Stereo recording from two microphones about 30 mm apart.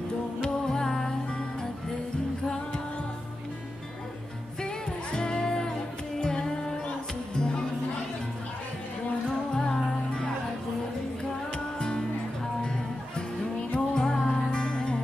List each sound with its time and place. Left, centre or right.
0.4 s music: left
4.6 s music: left
9.5 s music: left
11.5 s music: left
13.7 s music: left